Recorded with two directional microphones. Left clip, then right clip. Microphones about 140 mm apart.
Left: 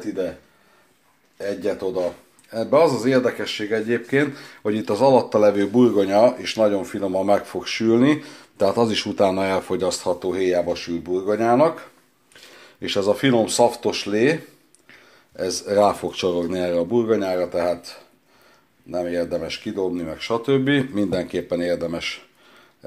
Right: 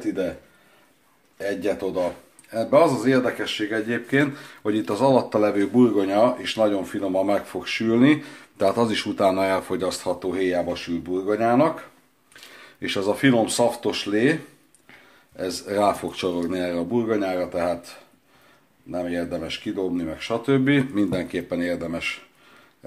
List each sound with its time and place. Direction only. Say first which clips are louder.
0.0 s a sound: even; 30° left (ahead or behind)
1.4 s speech: left 1 dB; 30° left (ahead or behind)
12.5 s speech: left 3 dB; 20° left (ahead or behind)